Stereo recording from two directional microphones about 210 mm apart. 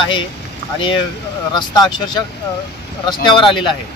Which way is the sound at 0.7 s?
25° left (ahead or behind).